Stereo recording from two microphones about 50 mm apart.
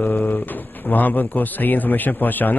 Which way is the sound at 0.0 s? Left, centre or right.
Left.